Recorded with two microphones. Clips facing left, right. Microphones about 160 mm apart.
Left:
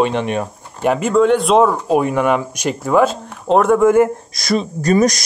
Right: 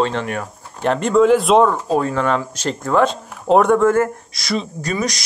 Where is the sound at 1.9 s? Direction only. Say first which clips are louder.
Left 3 dB; 15° left (ahead or behind).